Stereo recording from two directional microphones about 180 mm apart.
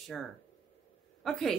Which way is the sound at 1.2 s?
Centre (ahead or behind).